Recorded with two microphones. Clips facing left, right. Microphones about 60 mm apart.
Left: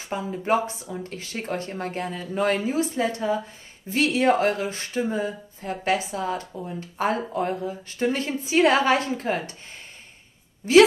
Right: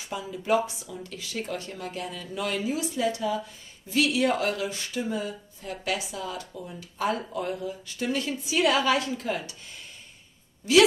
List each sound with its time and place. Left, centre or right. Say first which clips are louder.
0.1 s speech: left 2 dB; left